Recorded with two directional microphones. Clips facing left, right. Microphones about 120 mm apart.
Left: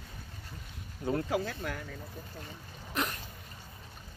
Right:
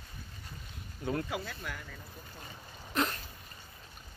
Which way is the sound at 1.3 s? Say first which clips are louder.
Left 6 dB; 40° left (ahead or behind).